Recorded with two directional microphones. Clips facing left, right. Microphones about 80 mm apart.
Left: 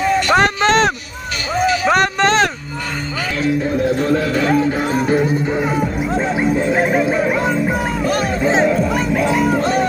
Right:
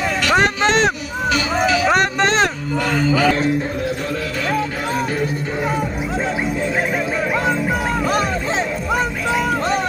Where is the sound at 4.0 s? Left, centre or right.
Left.